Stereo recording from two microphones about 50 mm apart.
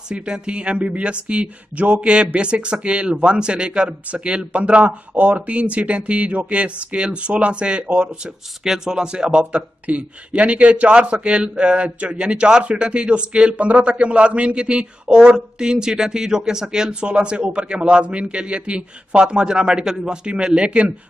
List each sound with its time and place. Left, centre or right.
0.1 s speech: right
8.1 s speech: centre